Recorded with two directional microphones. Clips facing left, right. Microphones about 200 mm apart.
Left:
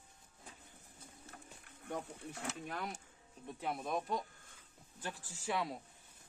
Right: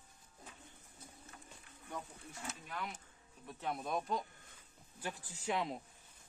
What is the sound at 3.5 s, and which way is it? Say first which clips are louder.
Speech: even; 5° left (ahead or behind).